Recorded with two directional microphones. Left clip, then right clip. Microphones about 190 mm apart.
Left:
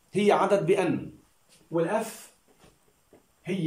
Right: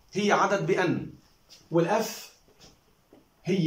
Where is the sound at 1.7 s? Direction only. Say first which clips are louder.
Right 2 dB; centre (ahead or behind).